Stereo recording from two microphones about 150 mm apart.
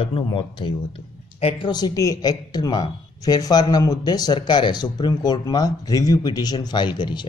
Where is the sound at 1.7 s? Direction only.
25° left (ahead or behind).